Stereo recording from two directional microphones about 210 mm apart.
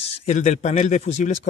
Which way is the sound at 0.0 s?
30° left (ahead or behind).